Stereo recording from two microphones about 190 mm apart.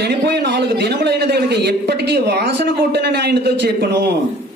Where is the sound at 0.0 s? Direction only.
60° right (ahead or behind).